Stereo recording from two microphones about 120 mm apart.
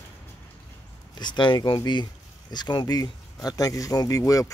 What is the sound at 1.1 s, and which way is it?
Speech, 40° left (ahead or behind).